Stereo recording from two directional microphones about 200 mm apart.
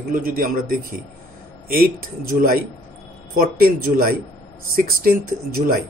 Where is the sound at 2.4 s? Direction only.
45° right (ahead or behind).